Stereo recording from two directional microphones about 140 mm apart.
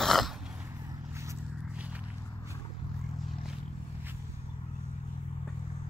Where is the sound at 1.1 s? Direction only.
20° right (ahead or behind).